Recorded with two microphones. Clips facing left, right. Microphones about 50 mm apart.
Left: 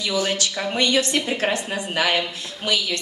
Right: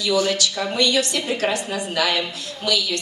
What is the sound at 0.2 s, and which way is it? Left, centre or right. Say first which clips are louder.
A woman's voice: right 2 dB; left.